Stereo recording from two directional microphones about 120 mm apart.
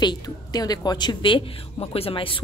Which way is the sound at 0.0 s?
35° left (ahead or behind).